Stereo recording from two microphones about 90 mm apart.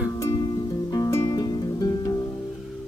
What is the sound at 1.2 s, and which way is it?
Music, 45° left (ahead or behind).